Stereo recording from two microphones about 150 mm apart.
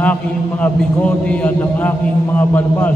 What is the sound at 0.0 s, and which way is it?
A man's voice, 10° left (ahead or behind).